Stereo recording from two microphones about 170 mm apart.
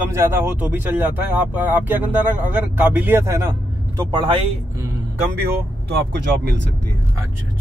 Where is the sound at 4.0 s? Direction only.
25° right (ahead or behind).